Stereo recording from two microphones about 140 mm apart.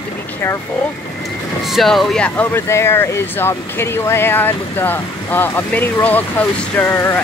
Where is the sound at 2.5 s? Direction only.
20° left (ahead or behind).